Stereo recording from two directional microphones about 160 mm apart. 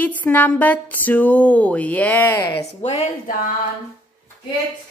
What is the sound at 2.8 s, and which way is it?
Speech, 40° left (ahead or behind).